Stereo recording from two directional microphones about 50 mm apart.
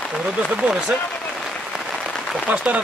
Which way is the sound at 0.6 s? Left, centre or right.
Right.